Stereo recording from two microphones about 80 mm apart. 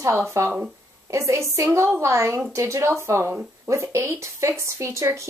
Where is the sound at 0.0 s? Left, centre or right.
Right.